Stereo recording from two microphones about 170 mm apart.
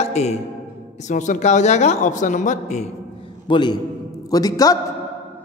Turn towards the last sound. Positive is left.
turn(degrees=20)  # may be behind; listen again after turning